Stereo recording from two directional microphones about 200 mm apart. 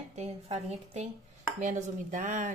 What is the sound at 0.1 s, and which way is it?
A woman's voice, 30° right (ahead or behind).